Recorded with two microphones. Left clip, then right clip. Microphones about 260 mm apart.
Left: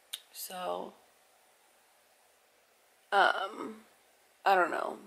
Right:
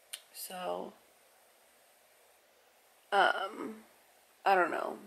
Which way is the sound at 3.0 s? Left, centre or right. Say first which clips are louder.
Left 2 dB; centre.